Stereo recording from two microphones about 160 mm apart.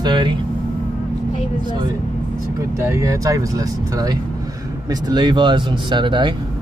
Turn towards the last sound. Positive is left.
turn(degrees=-30)  # may be behind; listen again after turning